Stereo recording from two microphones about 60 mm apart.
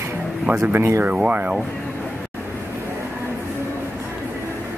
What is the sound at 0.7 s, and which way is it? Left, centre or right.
Speech, right.